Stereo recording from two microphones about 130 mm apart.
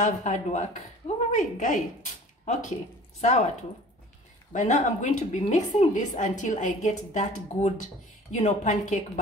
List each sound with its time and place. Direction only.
0.0 s a woman's voice: 70° left (ahead or behind)
3.2 s speech: 60° left (ahead or behind)
4.5 s a woman's voice: 70° left (ahead or behind)